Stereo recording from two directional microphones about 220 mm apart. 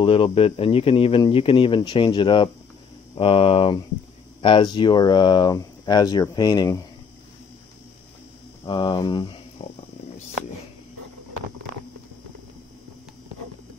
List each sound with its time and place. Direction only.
0.0 s speech: 25° left (ahead or behind)
8.6 s speech: 20° left (ahead or behind)
9.6 s cricket: 30° left (ahead or behind)